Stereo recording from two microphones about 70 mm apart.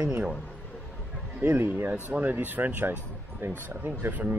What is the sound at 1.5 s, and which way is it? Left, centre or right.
Speech, right.